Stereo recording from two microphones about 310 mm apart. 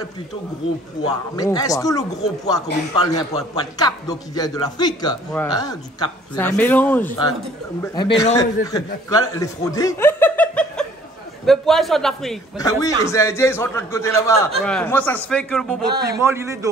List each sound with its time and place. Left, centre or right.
1.3 s a man's voice: centre
15.9 s a man's voice: right
16.2 s a man's voice: centre